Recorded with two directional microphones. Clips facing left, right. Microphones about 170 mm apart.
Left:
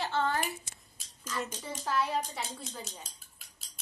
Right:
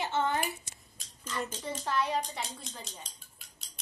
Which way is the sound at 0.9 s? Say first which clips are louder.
Even; 5° left (ahead or behind).